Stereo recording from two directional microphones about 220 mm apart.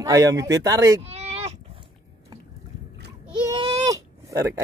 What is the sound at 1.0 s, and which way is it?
Sheep, 30° right (ahead or behind).